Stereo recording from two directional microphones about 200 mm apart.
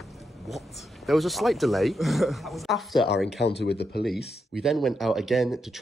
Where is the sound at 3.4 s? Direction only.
55° left (ahead or behind).